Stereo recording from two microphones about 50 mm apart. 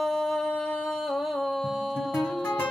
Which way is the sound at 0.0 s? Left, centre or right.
Centre.